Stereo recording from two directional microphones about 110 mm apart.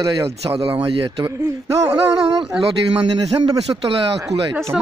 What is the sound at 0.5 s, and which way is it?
Speech, 60° right (ahead or behind).